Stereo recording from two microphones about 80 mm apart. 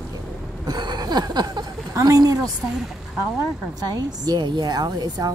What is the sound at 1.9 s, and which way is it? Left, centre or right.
Speech, right.